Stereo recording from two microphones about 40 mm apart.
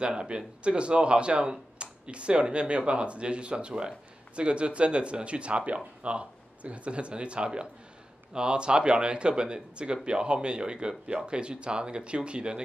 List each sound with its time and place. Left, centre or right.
0.0 s speech: right